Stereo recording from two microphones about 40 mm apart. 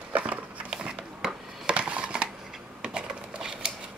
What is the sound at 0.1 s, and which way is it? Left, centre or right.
Dog, right.